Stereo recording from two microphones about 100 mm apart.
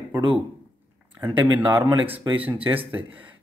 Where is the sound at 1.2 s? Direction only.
20° right (ahead or behind).